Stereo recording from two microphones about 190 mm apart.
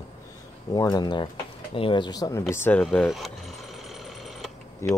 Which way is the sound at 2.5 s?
10° left (ahead or behind).